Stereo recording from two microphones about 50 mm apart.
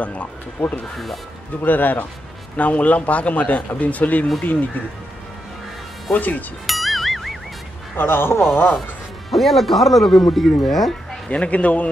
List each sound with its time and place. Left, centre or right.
0.0 s speech: left
0.9 s speech: centre
1.6 s speech: left
6.1 s speech: left
6.6 s music: centre
7.9 s a man's voice: left
9.3 s speech: centre
11.2 s speech: left